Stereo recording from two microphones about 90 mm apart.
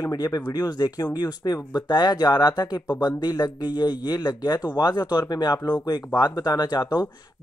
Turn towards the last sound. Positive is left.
turn(degrees=50)  # may be behind; listen again after turning